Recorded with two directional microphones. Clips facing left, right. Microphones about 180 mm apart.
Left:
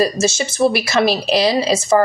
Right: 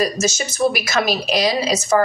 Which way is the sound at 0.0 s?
30° left (ahead or behind).